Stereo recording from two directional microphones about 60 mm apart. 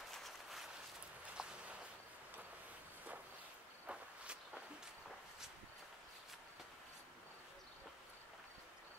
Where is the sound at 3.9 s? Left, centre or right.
Centre.